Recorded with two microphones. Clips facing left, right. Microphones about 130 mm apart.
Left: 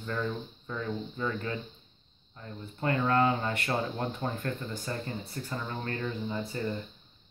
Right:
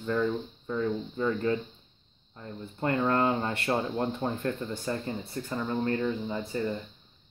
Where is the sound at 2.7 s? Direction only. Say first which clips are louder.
Even; 30° right (ahead or behind).